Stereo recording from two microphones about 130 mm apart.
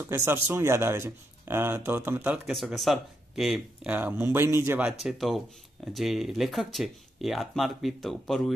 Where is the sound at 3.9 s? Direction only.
15° right (ahead or behind).